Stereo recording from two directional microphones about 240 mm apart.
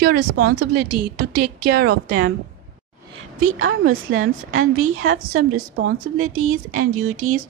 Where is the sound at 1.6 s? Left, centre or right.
Right.